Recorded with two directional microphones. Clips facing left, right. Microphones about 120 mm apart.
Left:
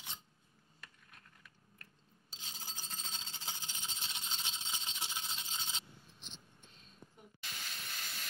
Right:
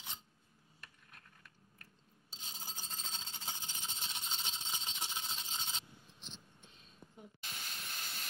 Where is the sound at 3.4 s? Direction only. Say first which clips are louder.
Right 1 dB; centre (ahead or behind).